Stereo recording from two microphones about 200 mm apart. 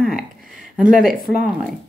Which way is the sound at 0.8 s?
45° right (ahead or behind).